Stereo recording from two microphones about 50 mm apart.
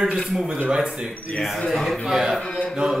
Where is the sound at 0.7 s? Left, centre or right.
Centre.